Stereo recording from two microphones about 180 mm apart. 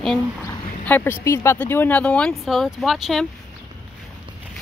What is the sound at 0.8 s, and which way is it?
Speech, 10° left (ahead or behind).